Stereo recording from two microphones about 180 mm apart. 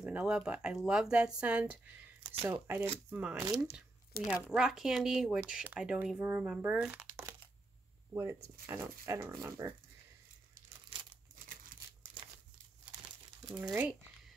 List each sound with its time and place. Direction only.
0.0 s speech: 5° right (ahead or behind)
2.3 s speech: 20° right (ahead or behind)
3.3 s speech: 20° right (ahead or behind)
4.1 s speech: 55° left (ahead or behind)
4.5 s speech: 5° right (ahead or behind)